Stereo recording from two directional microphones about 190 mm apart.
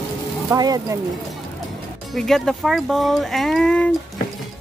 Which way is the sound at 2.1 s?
Centre (ahead or behind).